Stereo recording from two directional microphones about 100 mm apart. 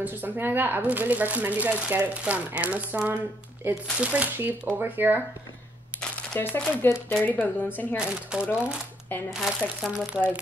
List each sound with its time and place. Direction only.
0.0 s speech: 20° right (ahead or behind)
5.9 s shuffling cards: 5° left (ahead or behind)
6.6 s speech: 15° left (ahead or behind)
8.0 s speech: 10° right (ahead or behind)